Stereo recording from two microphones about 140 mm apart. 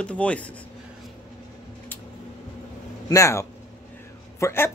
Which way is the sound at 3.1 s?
20° left (ahead or behind).